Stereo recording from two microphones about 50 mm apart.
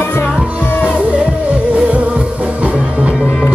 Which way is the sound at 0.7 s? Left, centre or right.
Left.